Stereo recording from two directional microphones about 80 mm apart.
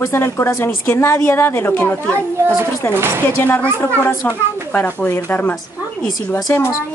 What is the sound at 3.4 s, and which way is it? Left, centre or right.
Speech, left.